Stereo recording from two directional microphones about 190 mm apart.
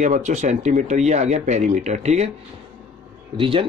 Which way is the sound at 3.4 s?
25° right (ahead or behind).